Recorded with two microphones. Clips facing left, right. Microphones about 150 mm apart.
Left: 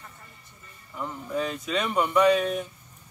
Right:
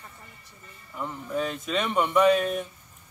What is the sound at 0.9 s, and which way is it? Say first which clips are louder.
Speech: even; centre (ahead or behind).